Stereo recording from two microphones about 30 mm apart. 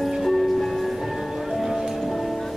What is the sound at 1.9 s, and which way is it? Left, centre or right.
Music, centre.